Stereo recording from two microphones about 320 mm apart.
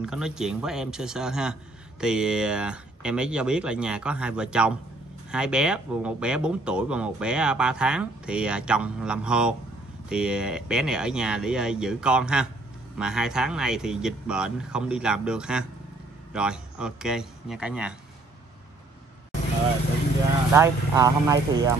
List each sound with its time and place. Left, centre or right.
0.0 s a man's voice: centre
20.5 s speech: centre